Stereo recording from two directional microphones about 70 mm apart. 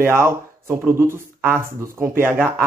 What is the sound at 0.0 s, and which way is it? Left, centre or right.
A man's voice, right.